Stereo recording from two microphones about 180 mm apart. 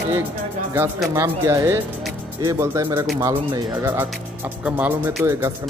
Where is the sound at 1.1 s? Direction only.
15° right (ahead or behind).